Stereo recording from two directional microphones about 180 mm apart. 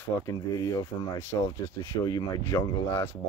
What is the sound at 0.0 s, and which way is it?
Speech, 20° left (ahead or behind).